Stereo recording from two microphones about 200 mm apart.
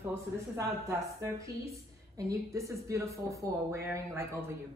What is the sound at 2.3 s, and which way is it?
Speech, 15° right (ahead or behind).